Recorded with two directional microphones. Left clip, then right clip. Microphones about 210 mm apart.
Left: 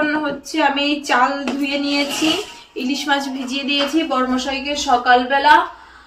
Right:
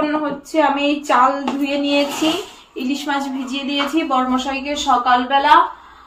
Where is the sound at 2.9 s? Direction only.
Centre (ahead or behind).